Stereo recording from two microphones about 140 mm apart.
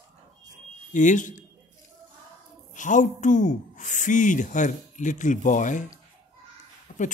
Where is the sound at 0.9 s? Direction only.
60° left (ahead or behind).